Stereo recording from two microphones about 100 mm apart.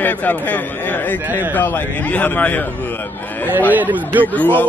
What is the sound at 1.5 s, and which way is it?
A man's voice, 20° left (ahead or behind).